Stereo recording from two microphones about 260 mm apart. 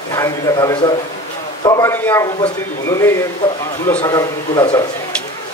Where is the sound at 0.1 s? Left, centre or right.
Centre.